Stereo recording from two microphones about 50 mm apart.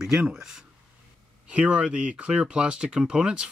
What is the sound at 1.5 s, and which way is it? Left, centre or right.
Speech, right.